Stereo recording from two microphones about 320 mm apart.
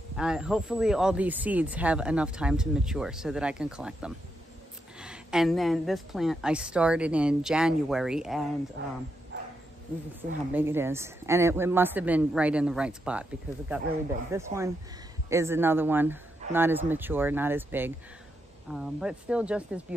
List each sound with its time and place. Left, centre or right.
0.2 s speech: centre
8.8 s speech: right
10.5 s speech: centre